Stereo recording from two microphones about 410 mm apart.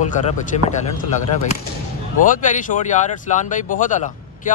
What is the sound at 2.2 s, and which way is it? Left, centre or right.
Speech, centre.